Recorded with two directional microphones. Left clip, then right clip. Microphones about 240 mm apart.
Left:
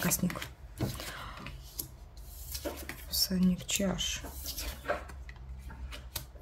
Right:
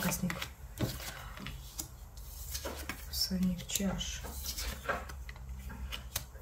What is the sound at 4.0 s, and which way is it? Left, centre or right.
Speech, left.